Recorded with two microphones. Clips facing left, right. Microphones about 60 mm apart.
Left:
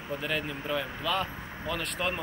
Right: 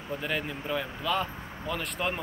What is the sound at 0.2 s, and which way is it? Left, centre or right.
Speech, centre.